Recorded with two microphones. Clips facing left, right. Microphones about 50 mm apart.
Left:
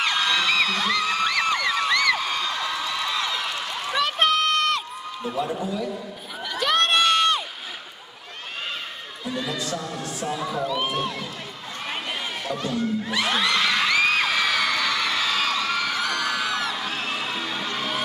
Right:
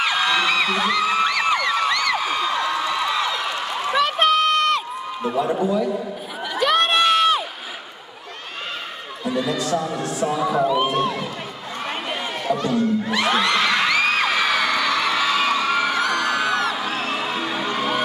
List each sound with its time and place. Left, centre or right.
0.0 s music: centre
1.6 s a sound: centre
4.0 s crowd: centre
5.4 s speech: centre
6.6 s crowd: centre
9.2 s speech: centre
10.4 s speech: right
11.9 s run: centre
13.1 s a sound: centre
16.0 s music: centre